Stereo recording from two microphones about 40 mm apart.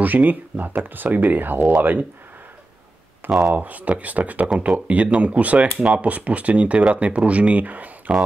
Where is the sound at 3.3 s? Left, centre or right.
Right.